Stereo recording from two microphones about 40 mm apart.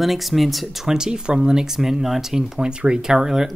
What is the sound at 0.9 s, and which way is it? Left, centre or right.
Speech, centre.